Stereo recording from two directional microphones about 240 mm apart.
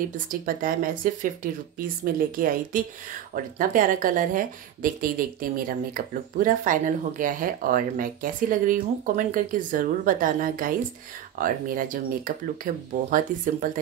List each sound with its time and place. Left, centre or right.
0.0 s a woman's voice: right